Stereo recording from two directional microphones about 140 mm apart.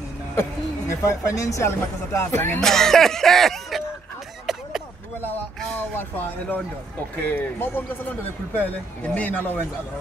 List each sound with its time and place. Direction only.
0.4 s speech: 20° left (ahead or behind)
2.6 s music: 5° left (ahead or behind)
4.5 s a sound: 5° right (ahead or behind)
5.6 s speech: 10° left (ahead or behind)